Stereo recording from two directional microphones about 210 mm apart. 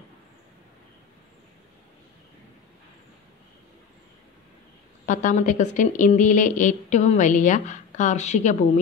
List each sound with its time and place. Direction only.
5.0 s a woman's voice: 35° left (ahead or behind)